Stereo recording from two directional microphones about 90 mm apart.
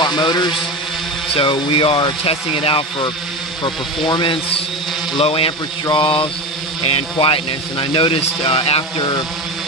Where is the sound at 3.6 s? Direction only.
60° left (ahead or behind).